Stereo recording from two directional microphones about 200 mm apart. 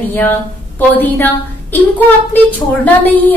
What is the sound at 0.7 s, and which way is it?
A woman's voice, 10° left (ahead or behind).